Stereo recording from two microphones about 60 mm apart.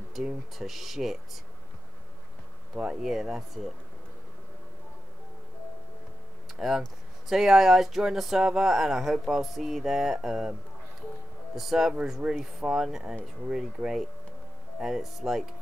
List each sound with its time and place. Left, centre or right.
0.2 s speech: centre
2.7 s speech: centre
6.6 s speech: centre
11.5 s speech: centre